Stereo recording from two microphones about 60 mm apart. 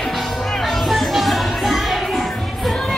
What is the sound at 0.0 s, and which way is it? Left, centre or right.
Music, centre.